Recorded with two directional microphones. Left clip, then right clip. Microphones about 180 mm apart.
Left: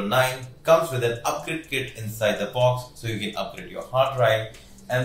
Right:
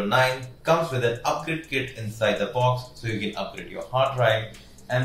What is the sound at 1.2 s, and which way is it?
Speech, 10° left (ahead or behind).